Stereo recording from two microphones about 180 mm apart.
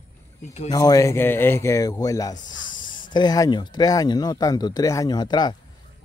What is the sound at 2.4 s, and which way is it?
Speech, 90° left.